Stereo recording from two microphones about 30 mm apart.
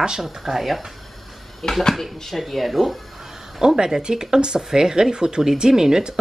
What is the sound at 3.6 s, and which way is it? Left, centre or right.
Speech, right.